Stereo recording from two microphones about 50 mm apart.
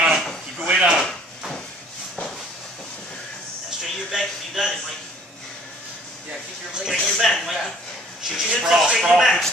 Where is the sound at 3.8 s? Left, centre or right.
Centre.